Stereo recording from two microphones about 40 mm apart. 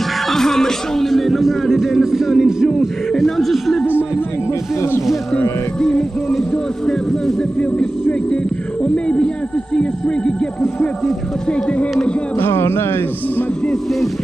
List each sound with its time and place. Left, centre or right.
0.3 s speech: centre
3.1 s speech: centre
5.8 s speech: centre
8.8 s speech: left
12.4 s speech: left